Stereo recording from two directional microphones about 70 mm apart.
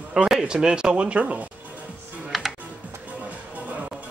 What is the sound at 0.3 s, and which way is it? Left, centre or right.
Speech, centre.